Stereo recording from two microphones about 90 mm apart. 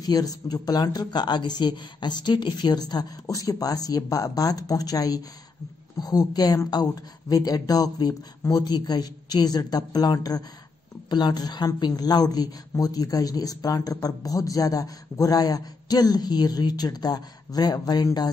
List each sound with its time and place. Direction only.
0.0 s a woman's voice: 45° left (ahead or behind)